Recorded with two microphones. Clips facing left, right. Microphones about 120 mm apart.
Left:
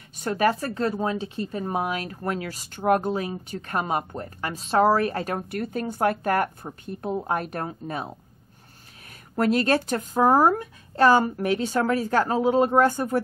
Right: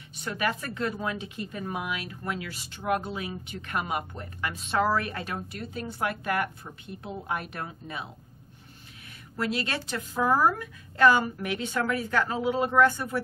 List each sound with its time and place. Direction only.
0.2 s speech: 40° left (ahead or behind)
9.3 s speech: 45° left (ahead or behind)